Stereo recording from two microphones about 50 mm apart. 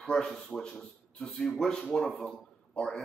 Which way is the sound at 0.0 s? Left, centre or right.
Centre.